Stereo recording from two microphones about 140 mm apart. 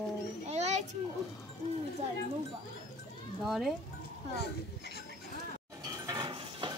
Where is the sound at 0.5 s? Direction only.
55° right (ahead or behind).